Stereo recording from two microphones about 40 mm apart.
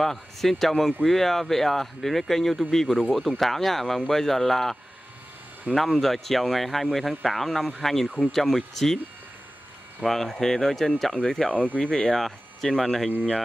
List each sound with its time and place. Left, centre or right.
0.0 s speech: centre
5.8 s speech: centre
10.0 s speech: centre
11.5 s speech: left
11.8 s speech: centre